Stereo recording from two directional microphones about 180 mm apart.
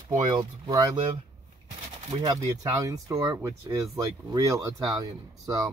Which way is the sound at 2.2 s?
20° right (ahead or behind).